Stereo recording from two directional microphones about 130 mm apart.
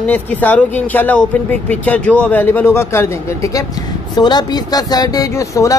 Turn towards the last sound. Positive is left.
turn(degrees=25)  # may be behind; listen again after turning